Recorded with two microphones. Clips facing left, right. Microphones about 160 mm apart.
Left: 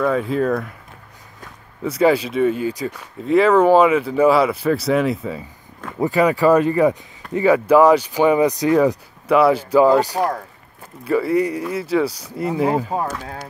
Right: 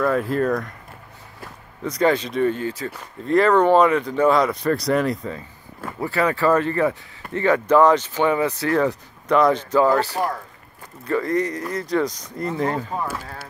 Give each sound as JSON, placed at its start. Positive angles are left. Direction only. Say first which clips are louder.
{"t": 0.0, "sound": "speech", "louder": "left 1 dB", "side_deg": 0}
{"t": 1.8, "sound": "speech", "louder": "left 3 dB", "side_deg": 5}
{"t": 5.9, "sound": "speech", "louder": "left 5 dB", "side_deg": 15}
{"t": 13.1, "sound": "speech", "louder": "left 3 dB", "side_deg": -10}